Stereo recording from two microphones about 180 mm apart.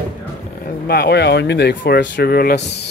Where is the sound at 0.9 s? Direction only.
65° left (ahead or behind).